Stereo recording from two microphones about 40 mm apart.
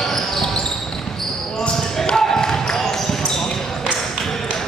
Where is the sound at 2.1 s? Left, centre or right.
Centre.